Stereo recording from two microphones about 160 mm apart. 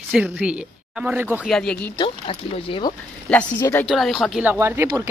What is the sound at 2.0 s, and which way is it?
Speech, 35° left (ahead or behind).